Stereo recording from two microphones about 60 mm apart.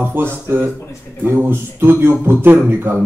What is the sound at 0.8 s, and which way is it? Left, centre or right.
Speech, left.